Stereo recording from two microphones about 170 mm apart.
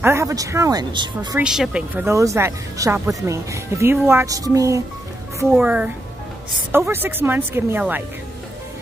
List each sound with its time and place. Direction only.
0.0 s speech: 15° right (ahead or behind)
1.4 s speech: 5° right (ahead or behind)
5.6 s speech: 5° right (ahead or behind)